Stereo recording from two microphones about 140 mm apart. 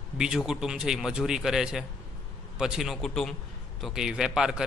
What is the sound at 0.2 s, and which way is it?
A man's voice, 5° right (ahead or behind).